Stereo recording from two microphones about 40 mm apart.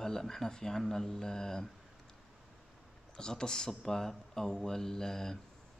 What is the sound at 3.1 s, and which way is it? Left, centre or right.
Speech, centre.